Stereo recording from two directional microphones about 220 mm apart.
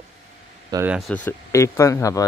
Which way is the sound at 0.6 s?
15° right (ahead or behind).